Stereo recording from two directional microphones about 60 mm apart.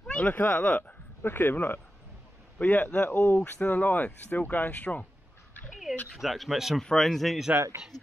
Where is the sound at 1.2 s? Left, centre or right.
Left.